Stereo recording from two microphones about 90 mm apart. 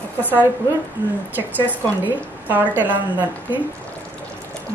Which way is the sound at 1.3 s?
20° right (ahead or behind).